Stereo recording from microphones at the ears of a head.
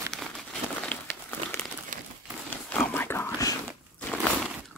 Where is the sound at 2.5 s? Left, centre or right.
Centre.